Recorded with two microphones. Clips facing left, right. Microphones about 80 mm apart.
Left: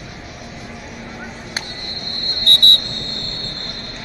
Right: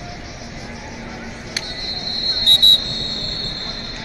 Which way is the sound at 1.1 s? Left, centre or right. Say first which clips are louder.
Left 1 dB; left.